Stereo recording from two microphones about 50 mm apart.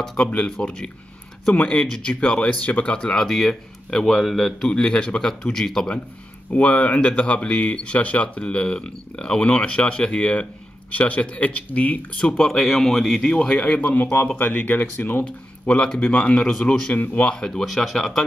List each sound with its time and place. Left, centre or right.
0.2 s speech: left
3.2 s speech: centre
4.6 s speech: centre
12.4 s speech: centre
13.3 s speech: left
15.6 s speech: centre
16.9 s speech: left
17.3 s speech: centre